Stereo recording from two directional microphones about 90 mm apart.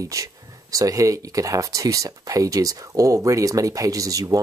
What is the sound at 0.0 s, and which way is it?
Speech, 40° right (ahead or behind).